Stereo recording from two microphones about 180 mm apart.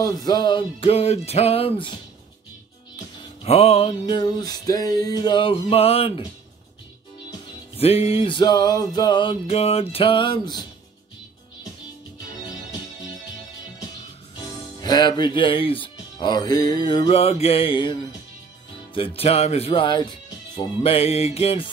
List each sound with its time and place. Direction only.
0.0 s speech: 20° left (ahead or behind)
3.4 s music: 35° left (ahead or behind)
7.7 s music: 35° left (ahead or behind)
14.4 s speech: 25° left (ahead or behind)
18.9 s speech: 30° left (ahead or behind)